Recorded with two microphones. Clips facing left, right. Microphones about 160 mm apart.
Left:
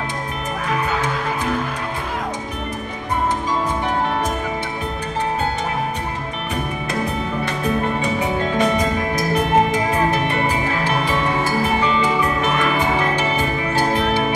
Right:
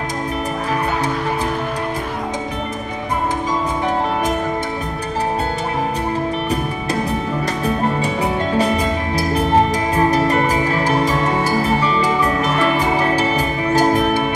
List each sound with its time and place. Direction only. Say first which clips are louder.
8.5 s music: even; 30° right (ahead or behind)